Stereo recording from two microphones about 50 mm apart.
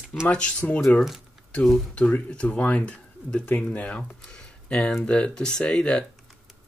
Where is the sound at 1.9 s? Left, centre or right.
Left.